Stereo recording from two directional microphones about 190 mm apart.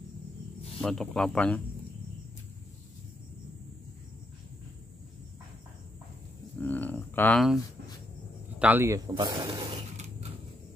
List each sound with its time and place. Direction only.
0.7 s speech: 5° left (ahead or behind)
6.6 s a sound: 10° left (ahead or behind)
8.5 s speech: 10° right (ahead or behind)